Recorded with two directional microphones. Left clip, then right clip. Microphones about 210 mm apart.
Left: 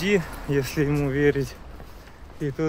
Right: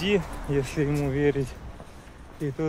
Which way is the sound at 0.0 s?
20° left (ahead or behind).